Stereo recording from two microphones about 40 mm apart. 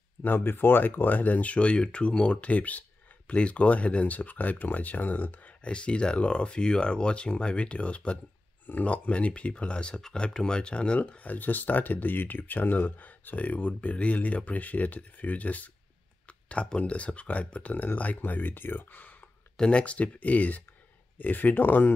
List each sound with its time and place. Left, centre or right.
0.2 s speech: left
2.5 s speech: left
5.6 s speech: left
11.2 s speech: left
16.3 s a sound: left
16.6 s speech: left
19.5 s speech: left